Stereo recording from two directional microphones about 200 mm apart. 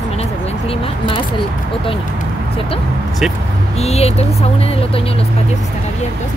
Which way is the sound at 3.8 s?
30° left (ahead or behind).